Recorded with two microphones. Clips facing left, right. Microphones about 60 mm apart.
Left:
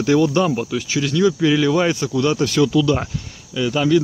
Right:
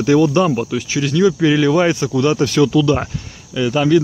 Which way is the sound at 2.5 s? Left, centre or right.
Right.